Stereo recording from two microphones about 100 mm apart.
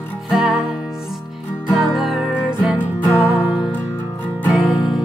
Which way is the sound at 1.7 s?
Centre (ahead or behind).